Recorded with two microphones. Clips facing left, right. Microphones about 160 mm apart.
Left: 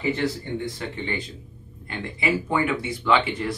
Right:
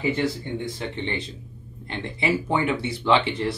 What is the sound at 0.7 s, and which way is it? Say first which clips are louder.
Speech: right 1 dB; 25° right (ahead or behind).